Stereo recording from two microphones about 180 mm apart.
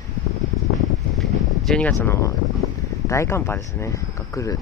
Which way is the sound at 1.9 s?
15° left (ahead or behind).